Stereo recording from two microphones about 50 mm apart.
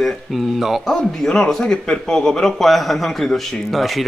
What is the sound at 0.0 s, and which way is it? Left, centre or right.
A man's voice, centre.